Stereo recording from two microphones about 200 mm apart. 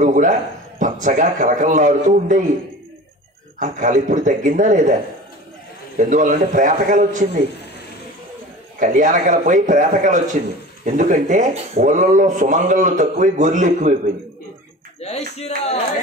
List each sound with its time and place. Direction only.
0.0 s a man's voice: 40° right (ahead or behind)
3.5 s speech: 40° right (ahead or behind)
5.9 s speech: 40° right (ahead or behind)
8.7 s speech: 40° right (ahead or behind)
15.0 s speech: 30° left (ahead or behind)